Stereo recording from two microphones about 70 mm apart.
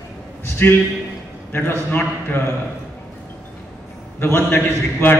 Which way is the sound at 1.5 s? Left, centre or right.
Left.